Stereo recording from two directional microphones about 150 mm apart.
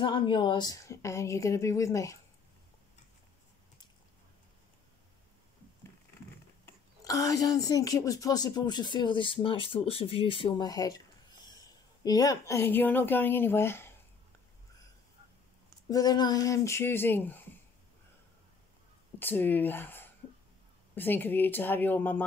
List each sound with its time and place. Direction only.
0.0 s speech: 30° left (ahead or behind)
6.6 s speech: 25° left (ahead or behind)
15.9 s speech: 25° left (ahead or behind)
19.1 s speech: 15° left (ahead or behind)